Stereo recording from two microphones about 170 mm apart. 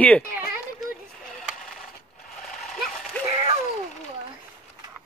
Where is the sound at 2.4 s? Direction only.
Centre (ahead or behind).